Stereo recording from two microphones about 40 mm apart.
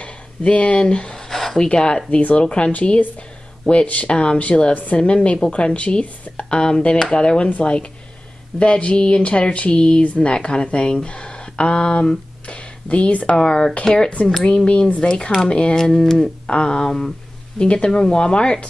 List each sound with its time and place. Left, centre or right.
0.0 s a sound: left; by 1.7 s centre
1.7 s a woman's voice: left
10.0 s speech: left
10.3 s speech: left
13.4 s a woman's voice: left
15.8 s a woman's voice: centre